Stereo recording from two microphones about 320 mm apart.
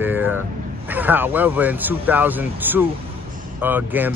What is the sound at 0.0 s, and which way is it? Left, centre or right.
Vehicle, centre.